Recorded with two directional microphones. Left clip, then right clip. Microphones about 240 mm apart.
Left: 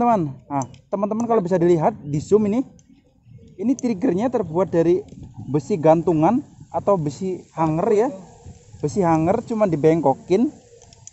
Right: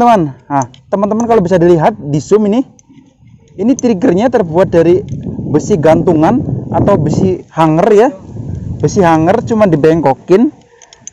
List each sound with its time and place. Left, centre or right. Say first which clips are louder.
0.0 s speech: right 11 dB; right
3.7 s speech: right 11 dB; right